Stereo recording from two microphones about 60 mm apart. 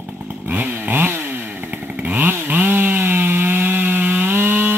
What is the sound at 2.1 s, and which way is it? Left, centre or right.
Chainsaw, right.